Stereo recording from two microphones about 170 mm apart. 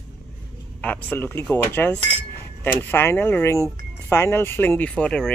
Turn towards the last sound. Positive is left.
turn(degrees=5)  # may be behind; listen again after turning